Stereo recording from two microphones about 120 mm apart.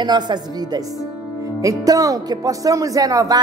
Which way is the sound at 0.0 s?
35° right (ahead or behind).